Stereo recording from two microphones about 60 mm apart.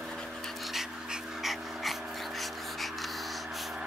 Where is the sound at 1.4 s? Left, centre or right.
Centre.